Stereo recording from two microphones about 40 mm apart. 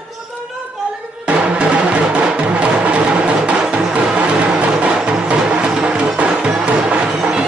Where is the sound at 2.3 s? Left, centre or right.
Right.